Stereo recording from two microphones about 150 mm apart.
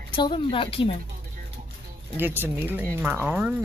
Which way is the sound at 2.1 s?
15° right (ahead or behind).